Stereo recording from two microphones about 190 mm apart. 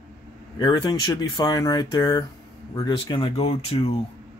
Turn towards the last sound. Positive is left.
turn(degrees=25)  # may be behind; listen again after turning